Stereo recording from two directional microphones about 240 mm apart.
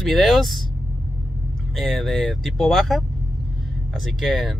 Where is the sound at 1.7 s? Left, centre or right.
Centre.